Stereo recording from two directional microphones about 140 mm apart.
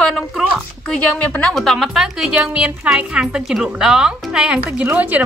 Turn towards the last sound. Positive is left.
turn(degrees=-10)  # may be behind; listen again after turning